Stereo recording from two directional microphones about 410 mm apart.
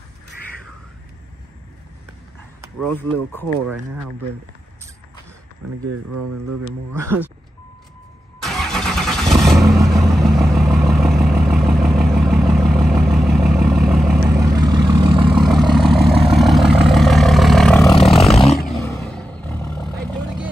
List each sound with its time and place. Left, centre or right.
2.8 s speech: centre
5.9 s speech: right
8.4 s vehicle: centre
15.3 s vehicle: centre
18.0 s roaring cats: centre
18.4 s vehicle: centre